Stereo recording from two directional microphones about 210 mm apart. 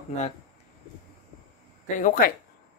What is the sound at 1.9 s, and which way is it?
Speech, 40° left (ahead or behind).